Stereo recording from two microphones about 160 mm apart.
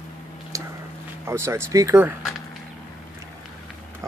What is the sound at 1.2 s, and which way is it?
Speech, 15° right (ahead or behind).